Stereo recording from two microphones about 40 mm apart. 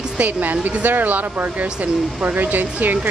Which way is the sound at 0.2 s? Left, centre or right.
Right.